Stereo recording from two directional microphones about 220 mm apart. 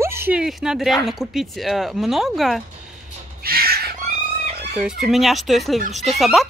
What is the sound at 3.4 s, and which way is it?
Crow, 45° right (ahead or behind).